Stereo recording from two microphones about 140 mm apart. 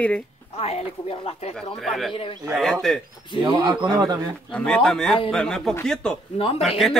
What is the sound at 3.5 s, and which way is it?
Speech, 30° right (ahead or behind).